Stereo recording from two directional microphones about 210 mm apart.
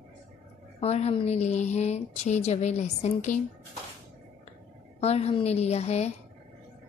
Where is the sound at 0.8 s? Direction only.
30° left (ahead or behind).